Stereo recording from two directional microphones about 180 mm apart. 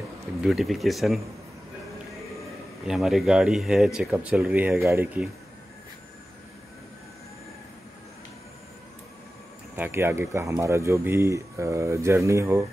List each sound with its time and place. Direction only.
0.4 s speech: centre (ahead or behind)
2.9 s speech: centre (ahead or behind)
9.8 s speech: 15° right (ahead or behind)